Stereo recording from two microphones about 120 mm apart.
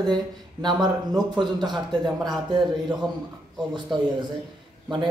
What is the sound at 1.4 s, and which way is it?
Speech, 40° right (ahead or behind).